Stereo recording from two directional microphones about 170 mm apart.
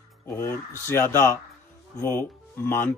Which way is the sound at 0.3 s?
15° left (ahead or behind).